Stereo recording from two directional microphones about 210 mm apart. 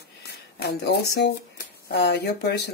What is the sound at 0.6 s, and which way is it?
Speech, 50° left (ahead or behind).